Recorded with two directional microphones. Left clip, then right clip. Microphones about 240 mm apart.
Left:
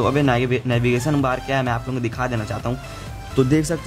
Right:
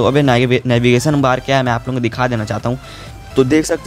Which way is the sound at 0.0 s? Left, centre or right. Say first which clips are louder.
Right 6 dB; right.